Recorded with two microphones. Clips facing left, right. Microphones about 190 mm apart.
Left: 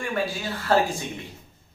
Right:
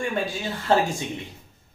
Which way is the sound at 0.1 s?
20° right (ahead or behind).